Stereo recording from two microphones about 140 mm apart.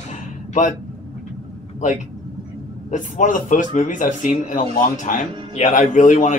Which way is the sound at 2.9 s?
65° left (ahead or behind).